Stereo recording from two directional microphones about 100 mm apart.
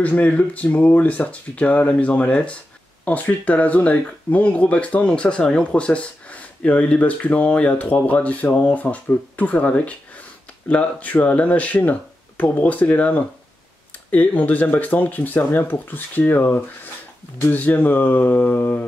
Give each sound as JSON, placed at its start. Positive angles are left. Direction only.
{"t": 0.0, "sound": "speech", "side_deg": 15}